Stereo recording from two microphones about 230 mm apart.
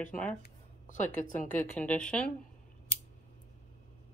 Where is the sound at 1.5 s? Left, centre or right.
Centre.